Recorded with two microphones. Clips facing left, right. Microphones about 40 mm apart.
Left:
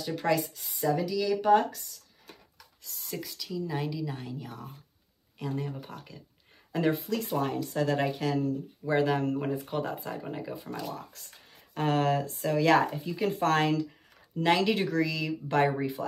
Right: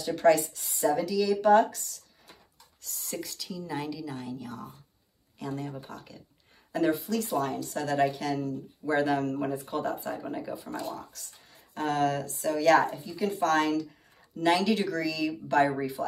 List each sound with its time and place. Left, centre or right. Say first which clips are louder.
0.0 s speech: right 5 dB; centre
2.9 s a woman's voice: right 1 dB; centre; by 8.5 s left
8.8 s a woman's voice: even; centre
14.3 s speech: even; centre